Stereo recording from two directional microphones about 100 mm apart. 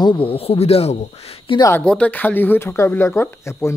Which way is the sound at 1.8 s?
10° left (ahead or behind).